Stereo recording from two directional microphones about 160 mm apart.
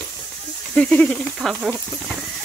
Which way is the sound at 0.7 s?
10° left (ahead or behind).